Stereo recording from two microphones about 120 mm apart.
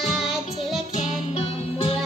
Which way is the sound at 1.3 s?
55° left (ahead or behind).